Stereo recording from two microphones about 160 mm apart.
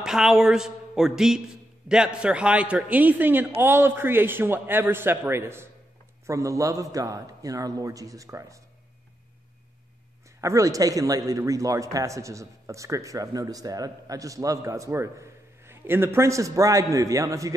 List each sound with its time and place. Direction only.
0.0 s a man's voice: 5° right (ahead or behind); by 8.6 s 20° right (ahead or behind)
10.4 s a man's voice: 20° right (ahead or behind)